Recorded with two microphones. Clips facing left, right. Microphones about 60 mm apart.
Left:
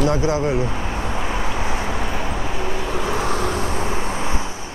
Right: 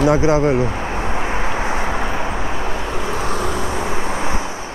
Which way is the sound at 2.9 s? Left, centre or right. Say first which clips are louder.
Left 1 dB; centre.